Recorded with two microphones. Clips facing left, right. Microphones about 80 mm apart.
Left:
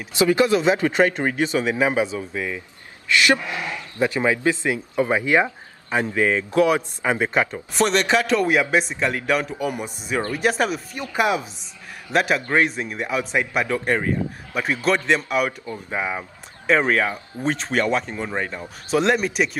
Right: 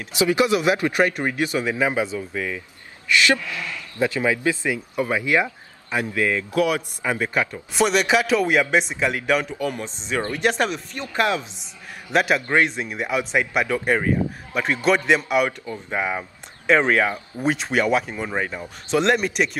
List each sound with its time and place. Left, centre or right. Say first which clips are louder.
0.2 s speech: left 2 dB; centre
0.7 s speech: left 1 dB; left
7.7 s a man's voice: even; centre
12.1 s a man's voice: even; centre